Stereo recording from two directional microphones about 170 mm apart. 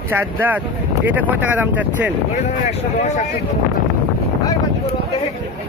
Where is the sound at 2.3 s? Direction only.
40° left (ahead or behind).